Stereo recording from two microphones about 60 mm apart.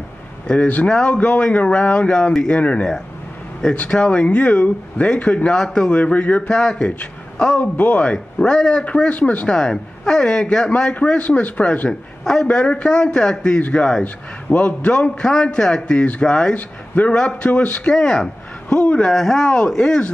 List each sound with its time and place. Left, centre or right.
0.5 s speech: left
6.5 s a woman's voice: centre
9.5 s speech: centre
11.1 s speech: left
11.9 s a man's voice: centre
12.4 s speech: centre
13.6 s speech: left
16.5 s speech: left
17.9 s a man's voice: centre
19.4 s speech: centre